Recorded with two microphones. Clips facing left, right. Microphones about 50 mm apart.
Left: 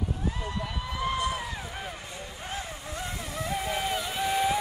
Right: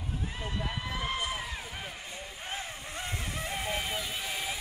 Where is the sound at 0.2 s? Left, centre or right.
Right.